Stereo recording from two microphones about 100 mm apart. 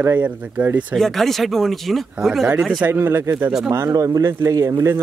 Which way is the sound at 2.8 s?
20° right (ahead or behind).